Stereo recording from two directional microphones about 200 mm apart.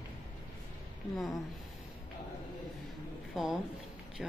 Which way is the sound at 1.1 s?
Centre (ahead or behind).